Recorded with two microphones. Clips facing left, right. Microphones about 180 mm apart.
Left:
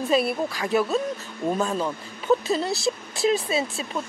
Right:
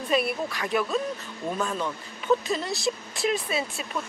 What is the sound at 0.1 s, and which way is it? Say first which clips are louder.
Speech: left 2 dB; 30° left (ahead or behind).